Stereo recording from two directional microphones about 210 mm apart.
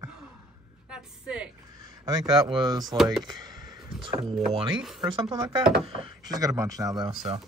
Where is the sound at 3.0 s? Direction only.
Centre (ahead or behind).